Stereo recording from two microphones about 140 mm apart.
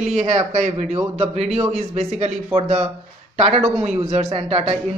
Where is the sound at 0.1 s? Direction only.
55° right (ahead or behind).